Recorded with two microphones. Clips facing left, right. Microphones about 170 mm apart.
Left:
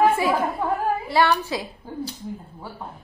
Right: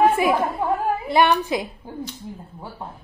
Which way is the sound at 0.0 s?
20° right (ahead or behind).